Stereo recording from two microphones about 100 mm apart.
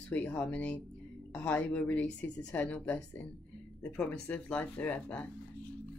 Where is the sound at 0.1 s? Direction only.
15° left (ahead or behind).